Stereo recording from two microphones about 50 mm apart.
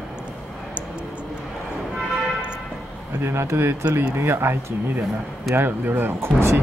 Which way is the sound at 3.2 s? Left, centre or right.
Right.